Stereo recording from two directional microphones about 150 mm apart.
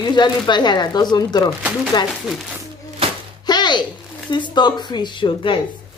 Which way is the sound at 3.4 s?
30° left (ahead or behind).